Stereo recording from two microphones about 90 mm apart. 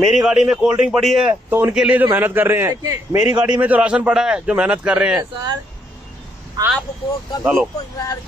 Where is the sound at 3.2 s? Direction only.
15° right (ahead or behind).